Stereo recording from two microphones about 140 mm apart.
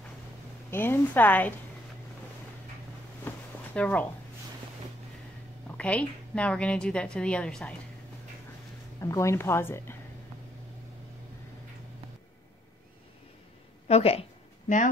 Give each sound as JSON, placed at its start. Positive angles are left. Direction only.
{"t": 0.7, "sound": "a woman's voice", "side_deg": 15}
{"t": 3.3, "sound": "a sound", "side_deg": 10}
{"t": 5.8, "sound": "a woman's voice", "side_deg": 10}
{"t": 9.0, "sound": "a woman's voice", "side_deg": 20}
{"t": 13.8, "sound": "speech", "side_deg": 45}